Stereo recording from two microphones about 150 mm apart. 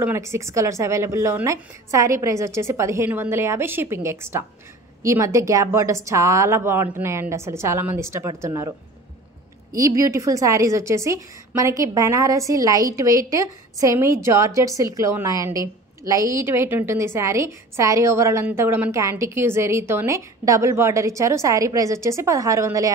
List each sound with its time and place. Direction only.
0.0 s a woman's voice: 15° right (ahead or behind)
9.8 s a woman's voice: 20° right (ahead or behind)